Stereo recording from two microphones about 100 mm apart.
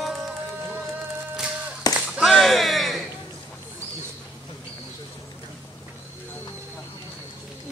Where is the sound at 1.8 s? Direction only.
40° left (ahead or behind).